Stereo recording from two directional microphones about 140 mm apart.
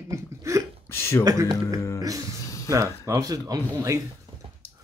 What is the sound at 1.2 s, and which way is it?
Speech, 25° right (ahead or behind).